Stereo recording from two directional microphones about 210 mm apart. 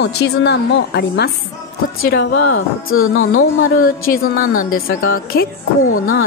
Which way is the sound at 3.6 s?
45° left (ahead or behind).